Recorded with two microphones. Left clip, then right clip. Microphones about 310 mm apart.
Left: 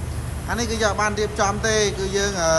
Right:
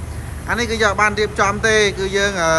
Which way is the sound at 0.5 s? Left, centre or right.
Centre.